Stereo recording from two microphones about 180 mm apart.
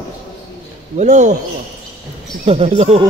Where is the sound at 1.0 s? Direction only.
40° right (ahead or behind).